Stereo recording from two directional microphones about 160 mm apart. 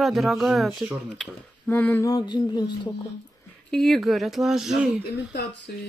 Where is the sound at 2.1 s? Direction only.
25° left (ahead or behind).